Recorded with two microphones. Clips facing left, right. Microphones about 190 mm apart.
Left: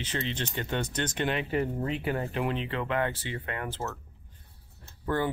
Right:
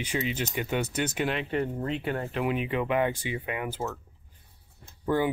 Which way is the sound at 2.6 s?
15° right (ahead or behind).